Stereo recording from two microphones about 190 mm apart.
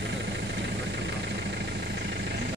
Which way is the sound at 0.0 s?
65° right (ahead or behind).